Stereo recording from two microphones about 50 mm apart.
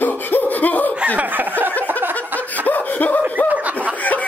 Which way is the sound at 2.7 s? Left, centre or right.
Left.